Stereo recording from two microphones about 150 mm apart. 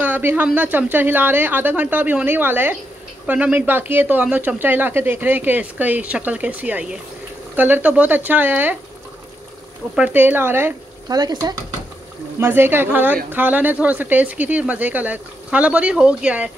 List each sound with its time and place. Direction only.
0.0 s speech: 10° right (ahead or behind)
9.9 s speech: 10° right (ahead or behind)
11.1 s speech: 25° right (ahead or behind)
12.4 s speech: 15° right (ahead or behind)